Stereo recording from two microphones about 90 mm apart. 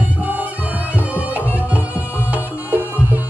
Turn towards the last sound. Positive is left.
turn(degrees=-20)  # may be behind; listen again after turning